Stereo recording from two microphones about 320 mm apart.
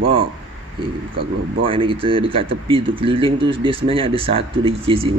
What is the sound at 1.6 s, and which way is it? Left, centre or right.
Speech, centre.